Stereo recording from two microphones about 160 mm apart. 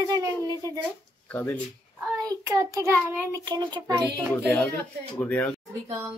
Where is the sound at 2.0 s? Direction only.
20° right (ahead or behind).